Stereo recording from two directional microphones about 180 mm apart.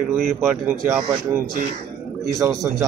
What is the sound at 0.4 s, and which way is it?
Speech, 10° right (ahead or behind).